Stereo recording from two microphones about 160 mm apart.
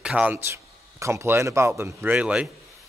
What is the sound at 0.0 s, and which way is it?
Speech, 10° right (ahead or behind).